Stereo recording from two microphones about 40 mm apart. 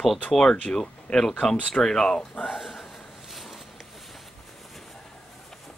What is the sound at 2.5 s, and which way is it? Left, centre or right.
Speech, centre.